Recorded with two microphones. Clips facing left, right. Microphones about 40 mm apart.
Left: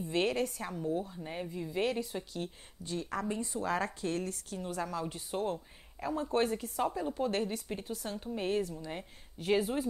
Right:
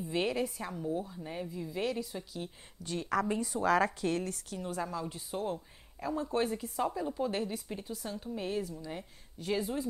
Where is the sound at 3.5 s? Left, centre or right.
Right.